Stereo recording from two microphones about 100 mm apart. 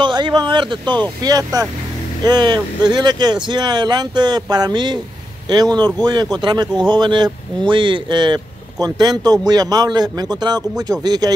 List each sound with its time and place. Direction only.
0.0 s speech: 50° right (ahead or behind)
1.2 s speech: 40° right (ahead or behind)